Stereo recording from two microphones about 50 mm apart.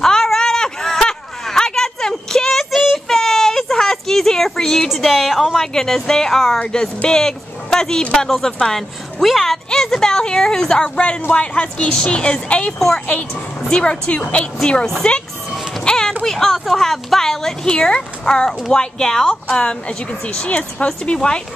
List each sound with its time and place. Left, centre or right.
0.0 s a sound: centre
4.8 s a woman's voice: centre
6.6 s speech: centre
9.2 s a woman's voice: centre; by 11.9 s left
11.9 s speech: centre
12.2 s a woman's voice: left
12.6 s a woman's voice: centre
15.8 s a sound: centre
16.3 s a woman's voice: centre